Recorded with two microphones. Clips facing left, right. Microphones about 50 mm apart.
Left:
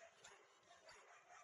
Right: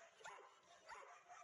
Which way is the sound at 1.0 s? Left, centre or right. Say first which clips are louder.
Right 4 dB; centre.